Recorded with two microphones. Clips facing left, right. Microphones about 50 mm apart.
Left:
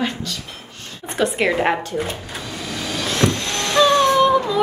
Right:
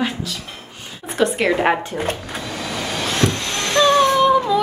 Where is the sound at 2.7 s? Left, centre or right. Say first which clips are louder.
Right 1 dB; right.